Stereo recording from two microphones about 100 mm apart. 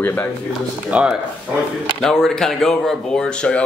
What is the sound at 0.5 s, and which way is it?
Speech, 10° right (ahead or behind).